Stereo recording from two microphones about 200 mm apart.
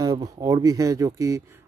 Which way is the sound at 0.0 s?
15° right (ahead or behind).